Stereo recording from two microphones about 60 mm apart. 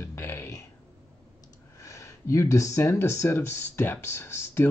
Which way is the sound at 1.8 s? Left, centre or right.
Left.